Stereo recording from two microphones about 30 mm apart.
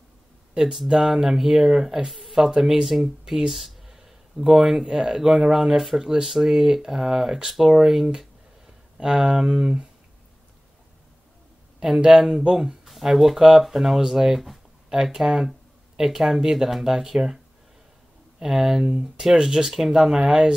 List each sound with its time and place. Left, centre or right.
0.6 s speech: centre
8.9 s speech: right
12.2 s speech: centre
12.8 s speech: centre
18.4 s speech: centre
20.2 s speech: right